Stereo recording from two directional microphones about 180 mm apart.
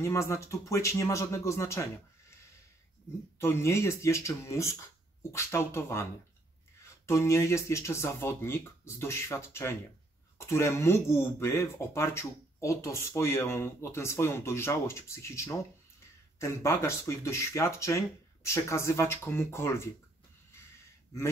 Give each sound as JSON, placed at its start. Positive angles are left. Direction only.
{"t": 0.0, "sound": "speech", "side_deg": 15}
{"t": 3.3, "sound": "speech", "side_deg": 15}